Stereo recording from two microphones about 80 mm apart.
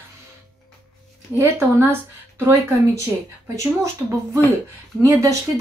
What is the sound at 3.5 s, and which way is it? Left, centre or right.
A woman's voice, right.